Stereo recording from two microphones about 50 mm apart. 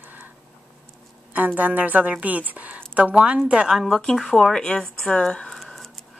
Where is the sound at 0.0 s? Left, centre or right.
Right.